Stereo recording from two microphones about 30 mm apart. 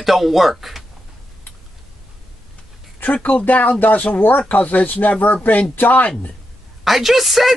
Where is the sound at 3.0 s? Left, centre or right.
Left.